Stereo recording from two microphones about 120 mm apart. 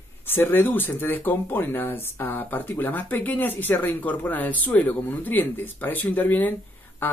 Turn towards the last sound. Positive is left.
turn(degrees=15)  # may be behind; listen again after turning